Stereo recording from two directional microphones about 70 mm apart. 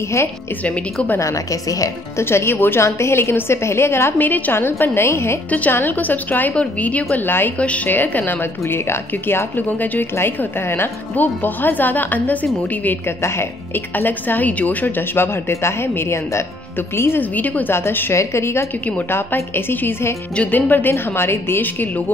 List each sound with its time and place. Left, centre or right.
1.2 s a woman's voice: left
2.1 s a woman's voice: left
5.5 s a woman's voice: left
7.5 s a woman's voice: centre
10.1 s a woman's voice: left
13.0 s a woman's voice: left
17.2 s a woman's voice: left
20.3 s a woman's voice: left